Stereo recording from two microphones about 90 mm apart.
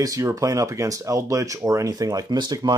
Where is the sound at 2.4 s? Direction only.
55° right (ahead or behind).